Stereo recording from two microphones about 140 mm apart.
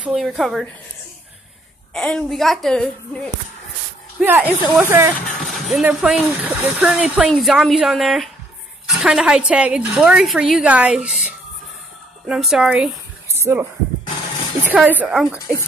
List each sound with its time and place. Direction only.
0.0 s speech: 5° right (ahead or behind)
2.0 s speech: 5° left (ahead or behind)
4.2 s a woman's voice: 10° right (ahead or behind)
5.4 s a woman's voice: centre (ahead or behind)
13.3 s a sound: 15° right (ahead or behind)
14.7 s a woman's voice: 10° right (ahead or behind)